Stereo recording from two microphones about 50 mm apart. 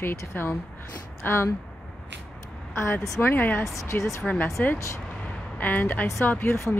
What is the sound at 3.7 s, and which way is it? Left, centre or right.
Speech, left.